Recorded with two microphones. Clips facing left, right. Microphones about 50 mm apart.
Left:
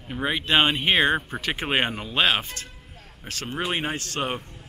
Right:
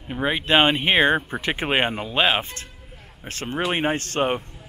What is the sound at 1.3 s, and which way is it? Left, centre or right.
Speech, right.